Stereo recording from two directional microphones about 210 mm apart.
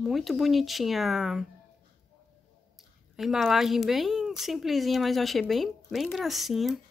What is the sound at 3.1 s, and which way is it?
Speech, centre (ahead or behind).